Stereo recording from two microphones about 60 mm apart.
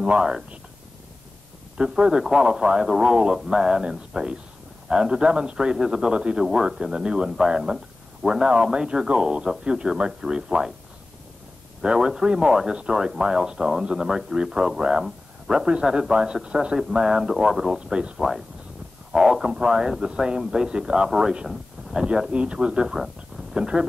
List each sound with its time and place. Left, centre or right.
0.0 s speech: centre
1.8 s speech: centre
11.8 s speech: centre